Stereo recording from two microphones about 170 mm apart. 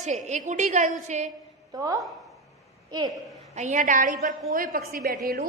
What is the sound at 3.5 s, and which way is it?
A woman's voice, 45° right (ahead or behind).